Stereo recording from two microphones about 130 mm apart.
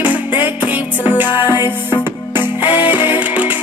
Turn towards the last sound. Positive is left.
turn(degrees=-10)  # may be behind; listen again after turning